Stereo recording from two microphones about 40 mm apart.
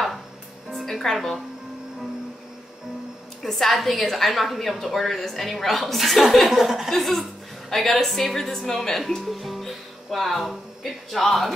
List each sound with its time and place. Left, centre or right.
0.8 s a woman's voice: centre
3.4 s a woman's voice: centre
6.5 s a woman's voice: centre
6.9 s a woman's voice: centre